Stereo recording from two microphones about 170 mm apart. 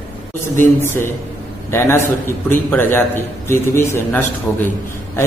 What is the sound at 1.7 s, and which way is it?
A man's voice, 15° left (ahead or behind).